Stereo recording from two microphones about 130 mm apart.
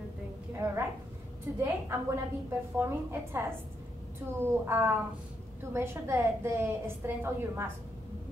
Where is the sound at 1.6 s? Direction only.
20° right (ahead or behind).